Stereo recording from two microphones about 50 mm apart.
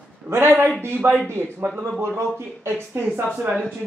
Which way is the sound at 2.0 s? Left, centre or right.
Right.